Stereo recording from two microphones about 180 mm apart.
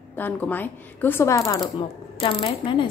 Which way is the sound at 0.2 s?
10° left (ahead or behind).